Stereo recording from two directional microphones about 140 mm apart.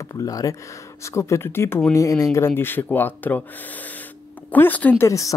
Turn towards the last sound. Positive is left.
turn(degrees=20)  # may be behind; listen again after turning